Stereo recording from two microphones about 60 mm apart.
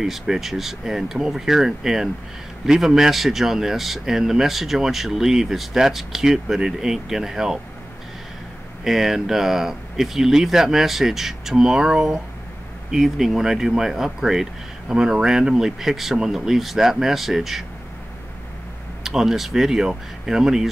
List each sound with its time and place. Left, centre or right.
0.0 s speech: centre
8.8 s speech: centre
19.0 s speech: centre